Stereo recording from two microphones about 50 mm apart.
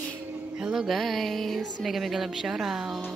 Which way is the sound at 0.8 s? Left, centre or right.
Centre.